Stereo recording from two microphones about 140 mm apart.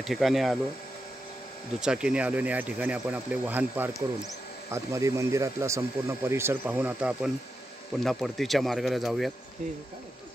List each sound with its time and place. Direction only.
0.0 s speech: centre (ahead or behind)
1.8 s speech: 5° right (ahead or behind)